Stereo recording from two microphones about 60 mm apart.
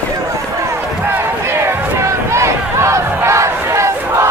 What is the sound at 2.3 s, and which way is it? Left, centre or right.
Battle cry, right.